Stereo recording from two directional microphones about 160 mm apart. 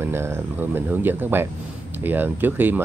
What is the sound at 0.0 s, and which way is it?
Speech, 15° right (ahead or behind).